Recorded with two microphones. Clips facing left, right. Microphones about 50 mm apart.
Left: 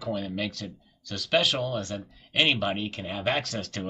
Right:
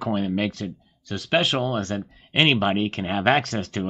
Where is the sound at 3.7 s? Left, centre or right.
Right.